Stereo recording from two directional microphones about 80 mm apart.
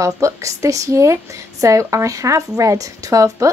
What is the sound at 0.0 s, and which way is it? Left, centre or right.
A woman's voice, right.